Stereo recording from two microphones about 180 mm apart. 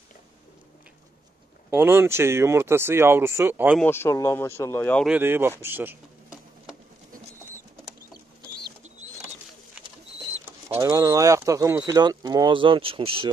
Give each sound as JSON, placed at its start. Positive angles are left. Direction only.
{"t": 1.7, "sound": "speech", "side_deg": -10}
{"t": 3.8, "sound": "speech", "side_deg": 15}
{"t": 5.0, "sound": "speech", "side_deg": -10}
{"t": 9.8, "sound": "a sound", "side_deg": -35}
{"t": 10.8, "sound": "speech", "side_deg": -20}